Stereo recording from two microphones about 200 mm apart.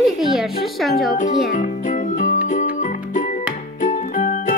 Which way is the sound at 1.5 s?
40° left (ahead or behind).